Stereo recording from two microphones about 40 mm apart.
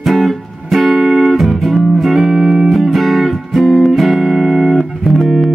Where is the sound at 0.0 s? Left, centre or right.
Centre.